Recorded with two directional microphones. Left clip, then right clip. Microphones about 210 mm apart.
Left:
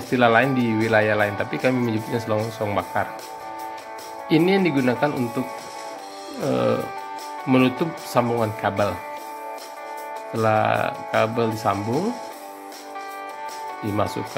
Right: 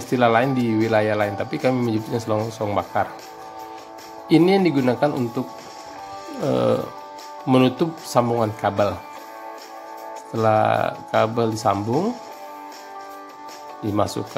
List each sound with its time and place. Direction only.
0.1 s speech: 10° right (ahead or behind)
4.3 s speech: 15° right (ahead or behind)
6.4 s speech: 15° right (ahead or behind)
10.3 s speech: 10° right (ahead or behind)
11.8 s speech: 5° left (ahead or behind)
13.9 s speech: 15° right (ahead or behind)